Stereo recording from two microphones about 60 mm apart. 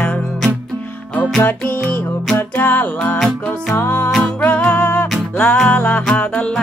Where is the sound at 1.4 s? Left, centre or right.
Left.